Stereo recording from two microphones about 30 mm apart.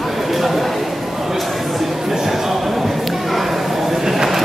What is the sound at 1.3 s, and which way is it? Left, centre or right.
Chatter, centre.